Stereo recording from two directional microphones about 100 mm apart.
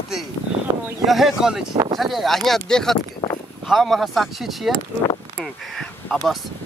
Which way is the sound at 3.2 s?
30° left (ahead or behind).